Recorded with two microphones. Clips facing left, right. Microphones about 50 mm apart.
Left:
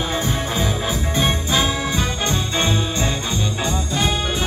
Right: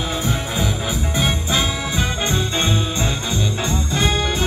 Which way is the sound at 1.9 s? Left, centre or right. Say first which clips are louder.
Right 1 dB; right.